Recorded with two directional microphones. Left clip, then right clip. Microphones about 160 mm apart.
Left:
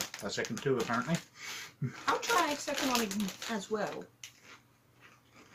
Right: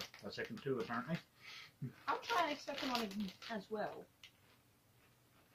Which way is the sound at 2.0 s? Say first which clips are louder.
Left 8 dB; 20° right (ahead or behind).